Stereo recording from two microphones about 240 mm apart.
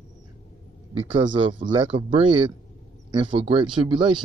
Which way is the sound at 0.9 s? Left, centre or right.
Right.